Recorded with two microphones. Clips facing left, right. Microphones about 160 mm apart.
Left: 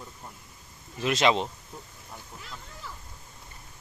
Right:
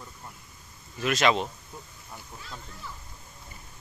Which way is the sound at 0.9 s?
25° left (ahead or behind).